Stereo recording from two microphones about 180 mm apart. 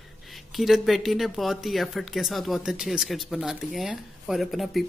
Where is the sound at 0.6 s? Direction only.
Centre (ahead or behind).